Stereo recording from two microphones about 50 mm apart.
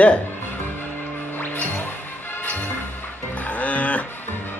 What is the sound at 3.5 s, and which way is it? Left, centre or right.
Music, left.